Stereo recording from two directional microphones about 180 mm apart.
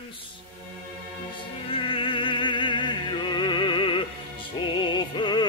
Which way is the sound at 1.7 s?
30° left (ahead or behind).